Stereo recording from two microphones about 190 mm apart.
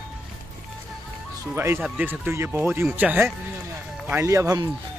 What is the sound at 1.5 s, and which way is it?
Speech, 10° right (ahead or behind).